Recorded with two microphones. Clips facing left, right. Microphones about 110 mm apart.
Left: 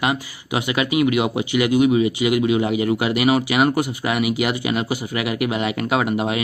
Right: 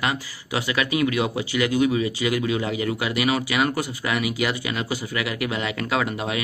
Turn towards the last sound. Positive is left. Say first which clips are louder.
# left 4 dB
turn(degrees=20)  # may be behind; listen again after turning